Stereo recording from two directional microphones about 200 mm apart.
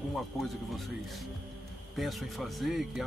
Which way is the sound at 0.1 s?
Centre (ahead or behind).